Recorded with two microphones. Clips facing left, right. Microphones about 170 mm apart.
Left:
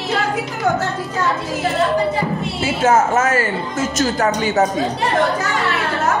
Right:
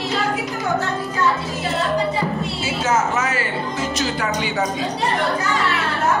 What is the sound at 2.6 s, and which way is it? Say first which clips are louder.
A woman's voice: left 6 dB; 50° left (ahead or behind).